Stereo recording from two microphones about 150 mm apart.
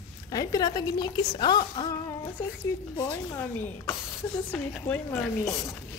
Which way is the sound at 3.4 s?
15° left (ahead or behind).